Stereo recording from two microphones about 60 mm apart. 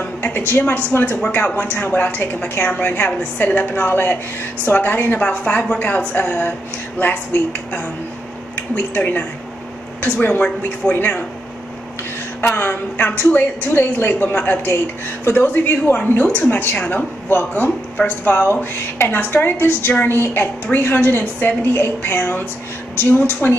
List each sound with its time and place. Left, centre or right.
0.5 s a woman's voice: left
12.4 s a woman's voice: left
18.6 s a woman's voice: left
21.8 s a woman's voice: left